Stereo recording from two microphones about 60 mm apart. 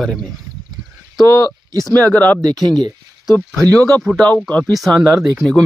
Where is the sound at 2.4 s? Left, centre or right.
Right.